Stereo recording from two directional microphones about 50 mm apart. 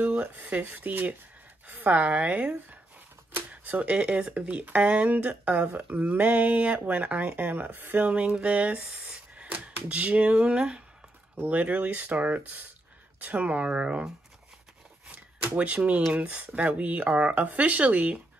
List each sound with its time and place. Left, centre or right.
0.0 s speech: right
8.1 s speech: right
11.4 s speech: right
15.0 s shuffling cards: right
16.1 s speech: right